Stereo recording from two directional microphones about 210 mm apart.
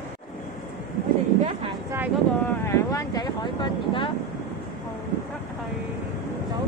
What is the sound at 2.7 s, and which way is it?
Vehicle, 15° left (ahead or behind).